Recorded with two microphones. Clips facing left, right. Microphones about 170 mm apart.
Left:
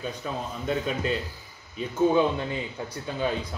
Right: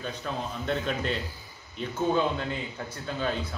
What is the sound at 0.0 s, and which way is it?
A man's voice, 5° left (ahead or behind).